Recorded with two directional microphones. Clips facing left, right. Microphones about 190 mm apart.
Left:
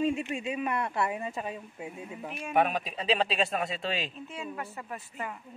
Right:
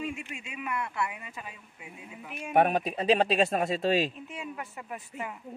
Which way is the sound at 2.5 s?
50° right (ahead or behind).